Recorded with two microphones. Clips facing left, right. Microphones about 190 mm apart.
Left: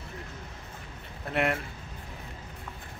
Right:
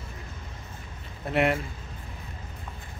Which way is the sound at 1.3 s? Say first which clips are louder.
Right 4 dB; centre (ahead or behind).